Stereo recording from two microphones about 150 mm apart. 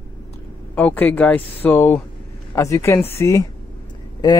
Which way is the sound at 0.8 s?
10° left (ahead or behind).